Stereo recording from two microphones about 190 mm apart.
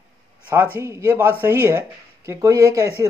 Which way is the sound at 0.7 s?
15° right (ahead or behind).